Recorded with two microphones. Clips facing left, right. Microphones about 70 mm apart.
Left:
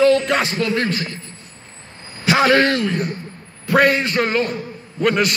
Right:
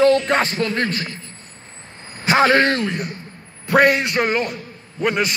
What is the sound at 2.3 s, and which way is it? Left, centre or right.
Speech, right.